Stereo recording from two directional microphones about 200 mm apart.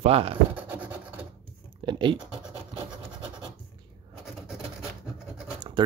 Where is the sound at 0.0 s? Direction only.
30° right (ahead or behind).